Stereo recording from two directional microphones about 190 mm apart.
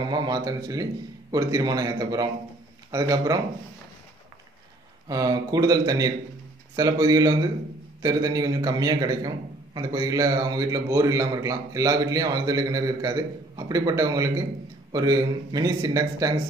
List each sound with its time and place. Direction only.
0.0 s a man's voice: 20° right (ahead or behind)
5.0 s a man's voice: 20° right (ahead or behind)